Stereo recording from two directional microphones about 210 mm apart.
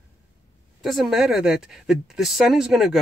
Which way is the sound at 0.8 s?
Centre (ahead or behind).